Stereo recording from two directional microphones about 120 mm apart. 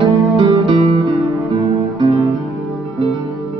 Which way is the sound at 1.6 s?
30° right (ahead or behind).